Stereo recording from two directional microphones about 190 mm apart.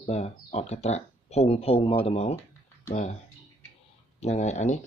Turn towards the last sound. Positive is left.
turn(degrees=35)  # may be behind; listen again after turning